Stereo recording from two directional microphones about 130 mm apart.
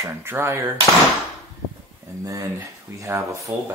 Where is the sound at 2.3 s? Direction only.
20° right (ahead or behind).